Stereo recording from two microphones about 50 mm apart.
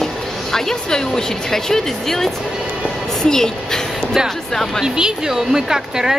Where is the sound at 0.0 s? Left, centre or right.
Centre.